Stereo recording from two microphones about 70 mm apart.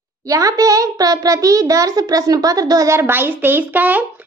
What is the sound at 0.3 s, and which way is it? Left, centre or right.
A child's voice, right.